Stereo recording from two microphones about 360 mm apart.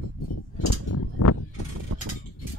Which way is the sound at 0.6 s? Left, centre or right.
Left.